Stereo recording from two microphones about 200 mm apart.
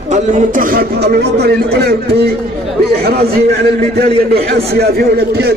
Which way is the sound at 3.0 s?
50° right (ahead or behind).